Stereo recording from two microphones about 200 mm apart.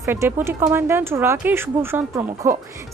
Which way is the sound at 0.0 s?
15° right (ahead or behind).